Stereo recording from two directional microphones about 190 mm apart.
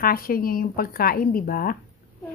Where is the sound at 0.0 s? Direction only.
50° left (ahead or behind).